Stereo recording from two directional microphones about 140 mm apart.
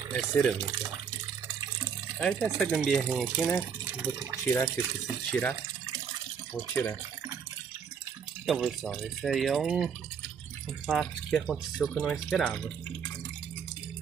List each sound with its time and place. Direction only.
0.1 s speech: 5° left (ahead or behind)
2.1 s speech: 5° left (ahead or behind)
5.3 s speech: 10° left (ahead or behind)
8.5 s speech: centre (ahead or behind)